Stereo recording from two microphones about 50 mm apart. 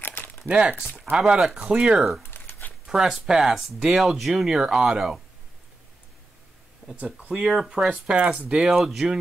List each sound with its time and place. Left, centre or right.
0.0 s crumpling: left
0.5 s speech: right
2.3 s a sound: left
2.9 s speech: centre
7.0 s speech: centre